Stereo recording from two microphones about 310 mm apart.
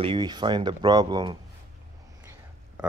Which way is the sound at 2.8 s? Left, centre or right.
Centre.